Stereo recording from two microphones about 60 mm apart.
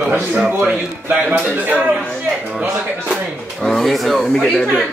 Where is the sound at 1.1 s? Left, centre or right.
Right.